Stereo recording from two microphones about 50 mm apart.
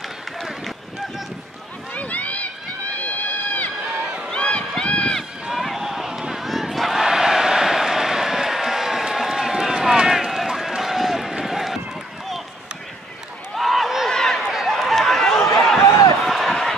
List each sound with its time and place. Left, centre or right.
2.0 s run: left
4.0 s run: centre
4.3 s run: left
5.5 s crowd: centre
13.6 s a sound: centre
14.1 s run: centre
14.5 s run: centre
16.3 s a sound: centre